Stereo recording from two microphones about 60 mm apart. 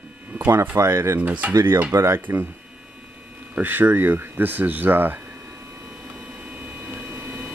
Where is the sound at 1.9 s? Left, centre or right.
Right.